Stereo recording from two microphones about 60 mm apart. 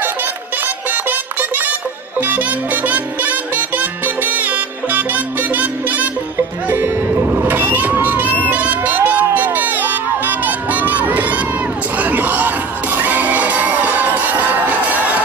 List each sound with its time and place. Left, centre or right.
1.6 s music: right